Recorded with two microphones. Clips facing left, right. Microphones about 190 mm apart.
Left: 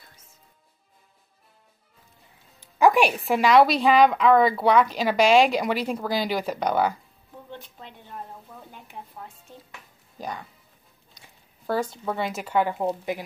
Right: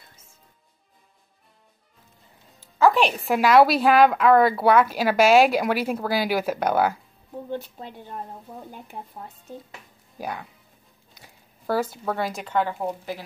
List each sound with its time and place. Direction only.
2.6 s a woman's voice: 15° left (ahead or behind); by 7.0 s 5° right (ahead or behind)
7.6 s speech: 40° right (ahead or behind)
10.1 s speech: 5° right (ahead or behind); by 13.2 s 20° left (ahead or behind)